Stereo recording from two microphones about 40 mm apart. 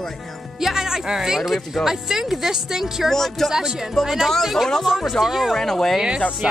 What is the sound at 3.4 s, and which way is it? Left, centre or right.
Speech, centre.